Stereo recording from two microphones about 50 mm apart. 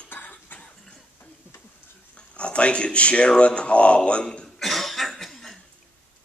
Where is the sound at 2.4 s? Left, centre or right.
Left.